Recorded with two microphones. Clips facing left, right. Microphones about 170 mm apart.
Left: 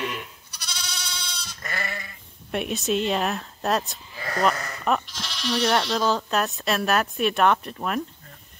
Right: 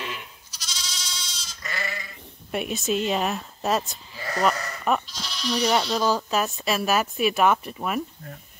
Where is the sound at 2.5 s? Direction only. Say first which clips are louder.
Left 1 dB; centre (ahead or behind).